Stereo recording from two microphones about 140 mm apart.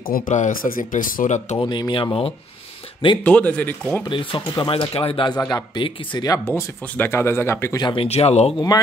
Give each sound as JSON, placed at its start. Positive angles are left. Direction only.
{"t": 0.0, "sound": "speech", "side_deg": 85}
{"t": 1.6, "sound": "speech", "side_deg": 35}
{"t": 3.3, "sound": "speech", "side_deg": 10}
{"t": 4.0, "sound": "speech", "side_deg": 35}
{"t": 6.4, "sound": "speech", "side_deg": 15}
{"t": 7.8, "sound": "speech", "side_deg": 40}
{"t": 8.5, "sound": "speech", "side_deg": 25}